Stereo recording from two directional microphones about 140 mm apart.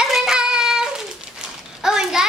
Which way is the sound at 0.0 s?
5° right (ahead or behind).